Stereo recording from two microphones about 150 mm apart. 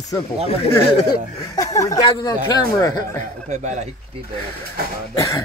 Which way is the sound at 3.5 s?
50° right (ahead or behind).